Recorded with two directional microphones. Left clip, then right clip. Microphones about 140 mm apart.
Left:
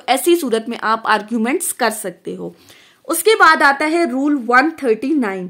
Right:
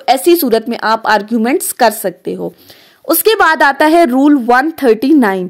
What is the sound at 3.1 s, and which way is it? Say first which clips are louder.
A woman's voice: right 2 dB; 60° right (ahead or behind).